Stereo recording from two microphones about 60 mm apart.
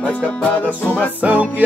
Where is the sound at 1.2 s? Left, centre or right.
Right.